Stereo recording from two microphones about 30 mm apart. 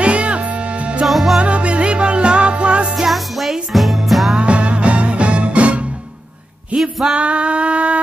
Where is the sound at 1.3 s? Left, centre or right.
Right.